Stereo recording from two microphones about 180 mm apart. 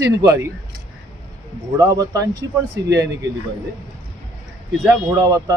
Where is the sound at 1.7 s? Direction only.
20° right (ahead or behind).